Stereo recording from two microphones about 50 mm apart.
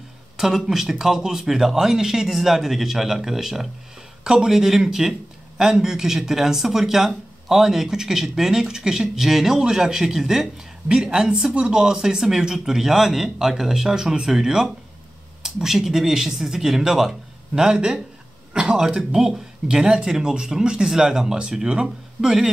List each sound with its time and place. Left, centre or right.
0.4 s speech: centre
11.1 s speech: centre